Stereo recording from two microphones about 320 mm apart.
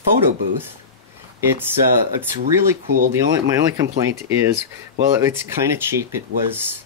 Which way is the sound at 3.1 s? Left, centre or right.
Centre.